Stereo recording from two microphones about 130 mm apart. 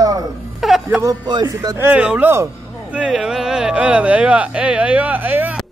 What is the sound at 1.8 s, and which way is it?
Speech, 10° right (ahead or behind).